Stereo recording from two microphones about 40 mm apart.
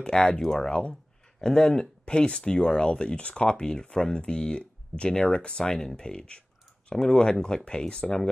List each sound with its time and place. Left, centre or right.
0.0 s speech: centre